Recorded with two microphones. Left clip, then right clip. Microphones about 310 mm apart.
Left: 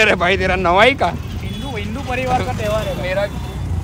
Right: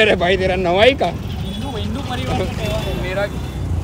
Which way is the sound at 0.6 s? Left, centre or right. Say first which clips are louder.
Left 1 dB; centre.